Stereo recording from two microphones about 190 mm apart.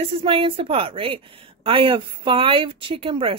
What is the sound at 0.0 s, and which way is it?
A woman's voice, 30° right (ahead or behind).